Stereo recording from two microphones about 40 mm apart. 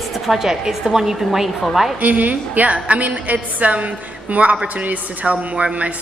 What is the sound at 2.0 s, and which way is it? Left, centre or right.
A woman's voice, right.